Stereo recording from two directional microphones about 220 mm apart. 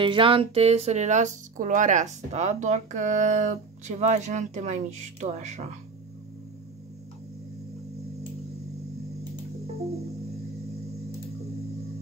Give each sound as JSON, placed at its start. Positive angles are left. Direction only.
{"t": 0.0, "sound": "speech", "side_deg": -25}